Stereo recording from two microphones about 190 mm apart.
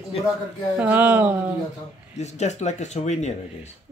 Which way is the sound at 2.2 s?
35° left (ahead or behind).